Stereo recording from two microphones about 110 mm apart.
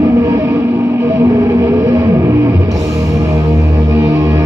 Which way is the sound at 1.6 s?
30° right (ahead or behind).